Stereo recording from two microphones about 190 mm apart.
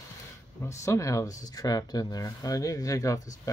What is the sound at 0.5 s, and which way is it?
Speech, 15° left (ahead or behind).